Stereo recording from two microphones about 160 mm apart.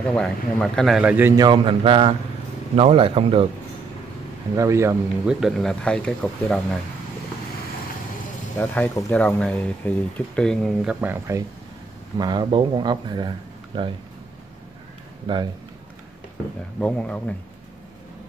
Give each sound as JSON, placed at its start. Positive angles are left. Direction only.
{"t": 0.0, "sound": "speech", "side_deg": 5}
{"t": 0.9, "sound": "a man's voice", "side_deg": -10}
{"t": 1.3, "sound": "a man's voice", "side_deg": -25}
{"t": 4.6, "sound": "speech", "side_deg": -20}
{"t": 5.2, "sound": "speech", "side_deg": -5}
{"t": 8.5, "sound": "speech", "side_deg": 10}
{"t": 12.2, "sound": "a man's voice", "side_deg": -25}
{"t": 15.3, "sound": "a man's voice", "side_deg": -30}
{"t": 16.8, "sound": "speech", "side_deg": 5}